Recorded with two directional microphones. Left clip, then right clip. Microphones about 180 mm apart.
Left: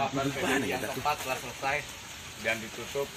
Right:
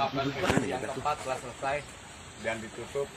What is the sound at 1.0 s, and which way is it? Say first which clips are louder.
Speech: left 1 dB; centre (ahead or behind).